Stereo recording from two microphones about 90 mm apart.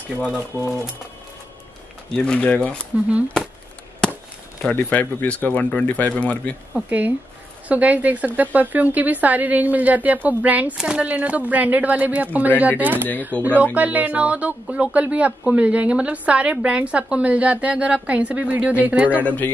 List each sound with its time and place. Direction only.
0.5 s speech: 30° right (ahead or behind)
2.1 s speech: 15° left (ahead or behind)
4.6 s speech: 15° left (ahead or behind)
6.9 s speech: 20° right (ahead or behind)
13.3 s speech: 15° left (ahead or behind)
13.7 s speech: 15° right (ahead or behind)
19.1 s speech: 20° left (ahead or behind)